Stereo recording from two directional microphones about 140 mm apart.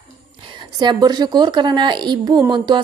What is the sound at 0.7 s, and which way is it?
Speech, 30° right (ahead or behind).